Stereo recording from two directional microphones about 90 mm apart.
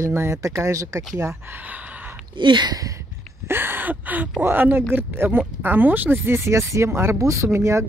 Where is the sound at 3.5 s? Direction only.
25° right (ahead or behind).